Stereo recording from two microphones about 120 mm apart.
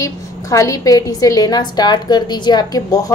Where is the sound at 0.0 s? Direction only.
25° left (ahead or behind).